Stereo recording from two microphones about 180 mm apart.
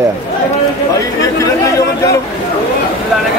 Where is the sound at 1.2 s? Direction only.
20° left (ahead or behind).